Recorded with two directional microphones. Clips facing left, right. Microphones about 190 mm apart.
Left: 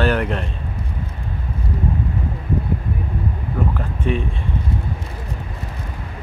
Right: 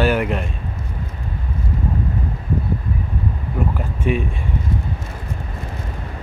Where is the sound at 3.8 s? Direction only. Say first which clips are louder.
Right 1 dB; 10° right (ahead or behind).